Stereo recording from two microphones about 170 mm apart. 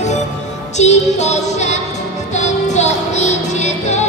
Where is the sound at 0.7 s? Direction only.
40° left (ahead or behind).